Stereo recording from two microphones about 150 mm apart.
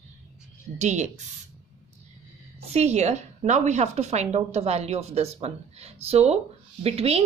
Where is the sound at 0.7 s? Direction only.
50° right (ahead or behind).